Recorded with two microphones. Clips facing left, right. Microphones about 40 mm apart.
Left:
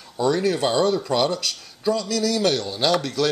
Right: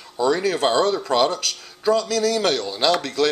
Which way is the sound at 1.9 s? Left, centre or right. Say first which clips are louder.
Right 4 dB; right.